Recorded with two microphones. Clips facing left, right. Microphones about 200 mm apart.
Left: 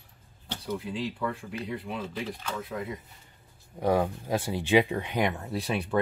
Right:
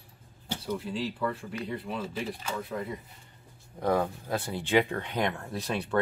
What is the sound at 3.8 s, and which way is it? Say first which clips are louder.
Speech: left 2 dB; 15° left (ahead or behind).